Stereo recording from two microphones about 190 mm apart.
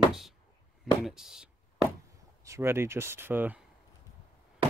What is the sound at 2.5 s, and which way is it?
Speech, 15° right (ahead or behind).